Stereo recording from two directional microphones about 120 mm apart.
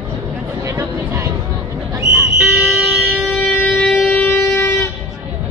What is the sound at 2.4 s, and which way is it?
Vehicle, 5° right (ahead or behind).